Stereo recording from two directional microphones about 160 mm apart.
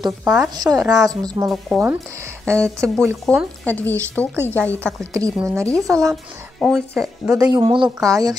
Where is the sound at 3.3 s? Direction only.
5° left (ahead or behind).